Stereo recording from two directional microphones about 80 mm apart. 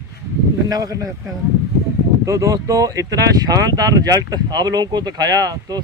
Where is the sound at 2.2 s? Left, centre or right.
Right.